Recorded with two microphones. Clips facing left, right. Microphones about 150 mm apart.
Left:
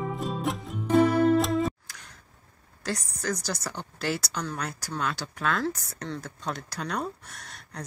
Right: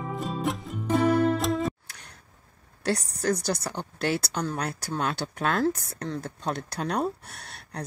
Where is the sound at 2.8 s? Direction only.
60° right (ahead or behind).